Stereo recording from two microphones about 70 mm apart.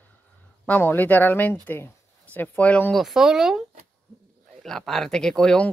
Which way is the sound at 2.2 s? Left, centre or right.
Left.